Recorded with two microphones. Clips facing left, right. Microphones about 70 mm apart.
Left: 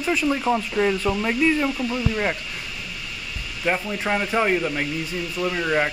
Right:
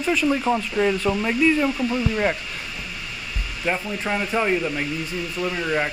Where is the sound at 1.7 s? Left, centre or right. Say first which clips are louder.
Right 2 dB; right.